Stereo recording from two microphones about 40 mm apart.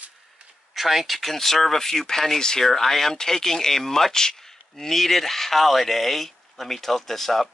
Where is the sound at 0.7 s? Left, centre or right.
Centre.